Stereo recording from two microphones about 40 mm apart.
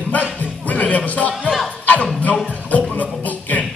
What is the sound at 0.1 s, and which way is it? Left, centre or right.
Music, left.